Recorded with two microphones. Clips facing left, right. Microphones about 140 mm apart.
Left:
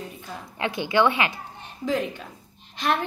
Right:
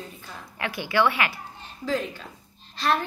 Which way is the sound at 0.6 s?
20° left (ahead or behind).